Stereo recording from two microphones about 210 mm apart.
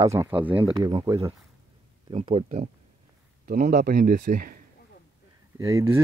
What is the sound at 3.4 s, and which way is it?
Speech, 45° right (ahead or behind).